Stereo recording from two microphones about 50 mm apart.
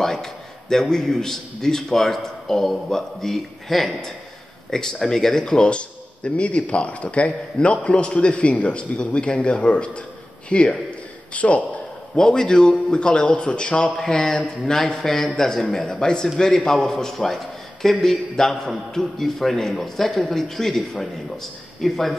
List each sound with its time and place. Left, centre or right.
0.0 s a man's voice: centre; by 11.8 s left
12.2 s a man's voice: centre
14.4 s a man's voice: centre